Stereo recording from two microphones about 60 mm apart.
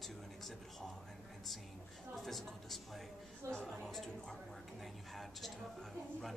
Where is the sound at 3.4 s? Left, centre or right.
Right.